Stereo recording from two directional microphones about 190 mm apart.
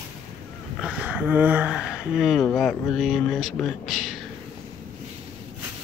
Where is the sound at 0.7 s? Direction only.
5° right (ahead or behind).